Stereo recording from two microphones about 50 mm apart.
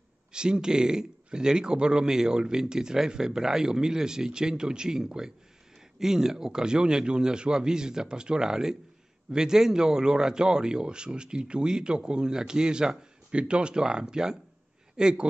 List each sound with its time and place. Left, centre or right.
0.3 s a man's voice: centre